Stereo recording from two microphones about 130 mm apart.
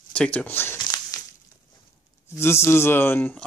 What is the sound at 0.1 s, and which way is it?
Speech, 10° left (ahead or behind).